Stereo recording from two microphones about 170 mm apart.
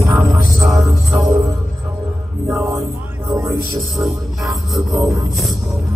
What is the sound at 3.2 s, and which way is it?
Music, 20° right (ahead or behind).